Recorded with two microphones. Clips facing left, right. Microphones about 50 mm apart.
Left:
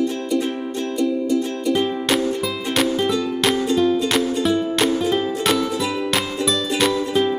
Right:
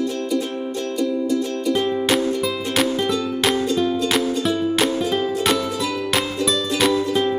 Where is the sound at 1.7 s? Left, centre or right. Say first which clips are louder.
Even; centre.